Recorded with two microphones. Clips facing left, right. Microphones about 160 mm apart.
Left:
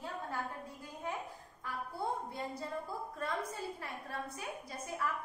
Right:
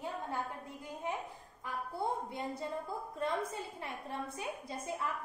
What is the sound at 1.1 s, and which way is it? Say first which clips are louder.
Speech: right 2 dB; 20° right (ahead or behind).